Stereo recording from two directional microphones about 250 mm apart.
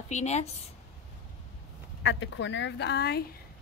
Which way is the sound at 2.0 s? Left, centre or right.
Left.